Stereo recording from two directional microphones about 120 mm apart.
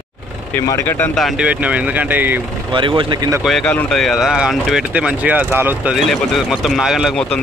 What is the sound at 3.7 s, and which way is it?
Speech, 10° left (ahead or behind).